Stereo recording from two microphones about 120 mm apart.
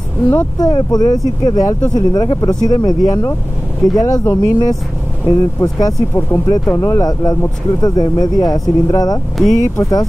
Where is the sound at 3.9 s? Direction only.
30° left (ahead or behind).